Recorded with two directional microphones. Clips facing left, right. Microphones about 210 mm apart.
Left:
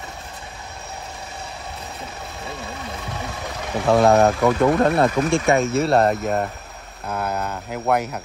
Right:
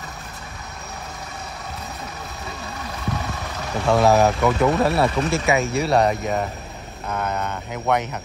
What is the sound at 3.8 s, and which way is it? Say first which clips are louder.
Speech: left 2 dB; centre (ahead or behind).